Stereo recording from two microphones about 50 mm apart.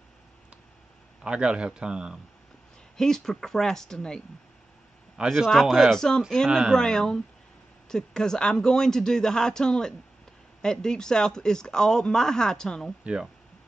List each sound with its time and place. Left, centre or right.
1.2 s speech: centre
3.0 s speech: centre
5.2 s speech: centre
5.5 s speech: centre